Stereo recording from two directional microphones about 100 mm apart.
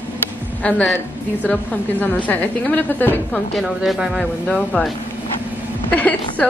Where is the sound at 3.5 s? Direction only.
Centre (ahead or behind).